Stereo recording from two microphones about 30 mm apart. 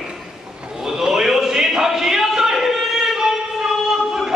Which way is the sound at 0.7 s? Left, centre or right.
Centre.